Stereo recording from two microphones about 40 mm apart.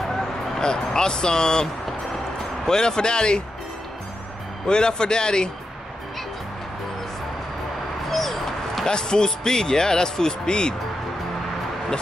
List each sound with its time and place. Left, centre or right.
0.6 s speech: centre
4.6 s speech: left
8.1 s a sound: centre
8.8 s speech: centre